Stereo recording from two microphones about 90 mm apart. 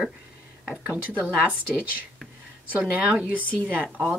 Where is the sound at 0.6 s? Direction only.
15° right (ahead or behind).